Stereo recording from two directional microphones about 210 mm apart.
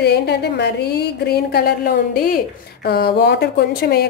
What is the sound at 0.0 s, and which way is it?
Speech, 50° left (ahead or behind).